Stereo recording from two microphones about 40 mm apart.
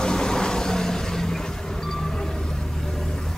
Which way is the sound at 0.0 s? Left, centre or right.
Centre.